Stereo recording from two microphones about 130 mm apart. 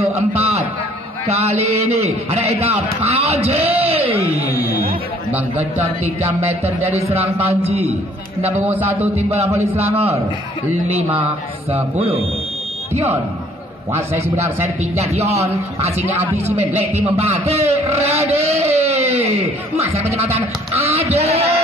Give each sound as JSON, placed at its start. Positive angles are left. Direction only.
{"t": 0.0, "sound": "a sound", "side_deg": -55}
{"t": 1.2, "sound": "a man's voice", "side_deg": -55}
{"t": 4.2, "sound": "music", "side_deg": -15}
{"t": 6.6, "sound": "a man's voice", "side_deg": -55}
{"t": 8.6, "sound": "music", "side_deg": -15}
{"t": 11.7, "sound": "a man's voice", "side_deg": -45}
{"t": 14.6, "sound": "a man's voice", "side_deg": -55}
{"t": 16.7, "sound": "a man's voice", "side_deg": -55}